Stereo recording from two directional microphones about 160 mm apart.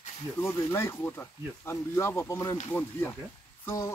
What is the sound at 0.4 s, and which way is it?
Speech, 20° left (ahead or behind).